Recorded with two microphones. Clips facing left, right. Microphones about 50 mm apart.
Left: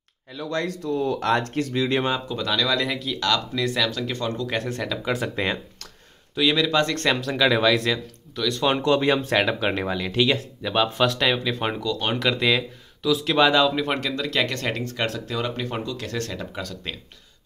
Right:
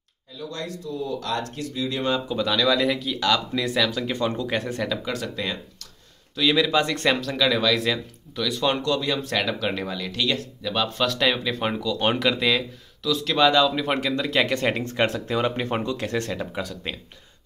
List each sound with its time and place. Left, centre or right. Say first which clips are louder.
0.3 s speech: left 5 dB; left
2.2 s speech: right 2 dB; centre
4.5 s speech: right 1 dB; centre
4.9 s speech: left 2 dB; centre
5.2 s speech: left 4 dB; left
6.5 s speech: right 2 dB; centre
7.3 s speech: left 2 dB; centre
7.7 s speech: left 1 dB; centre
8.8 s speech: left 5 dB; left
11.1 s speech: even; centre
13.9 s speech: right 2 dB; centre
16.3 s speech: right 2 dB; centre